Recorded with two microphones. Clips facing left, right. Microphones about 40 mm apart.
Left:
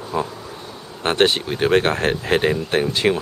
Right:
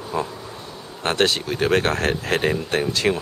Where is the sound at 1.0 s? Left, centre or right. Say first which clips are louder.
Left 3 dB; centre.